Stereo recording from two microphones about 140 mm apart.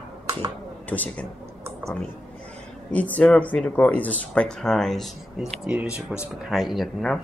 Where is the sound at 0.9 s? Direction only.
10° left (ahead or behind).